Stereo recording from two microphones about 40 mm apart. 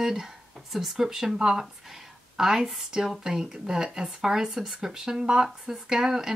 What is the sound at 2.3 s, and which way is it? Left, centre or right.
Speech, centre.